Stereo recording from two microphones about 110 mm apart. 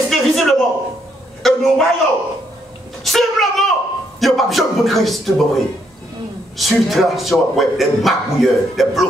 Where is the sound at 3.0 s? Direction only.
Centre (ahead or behind).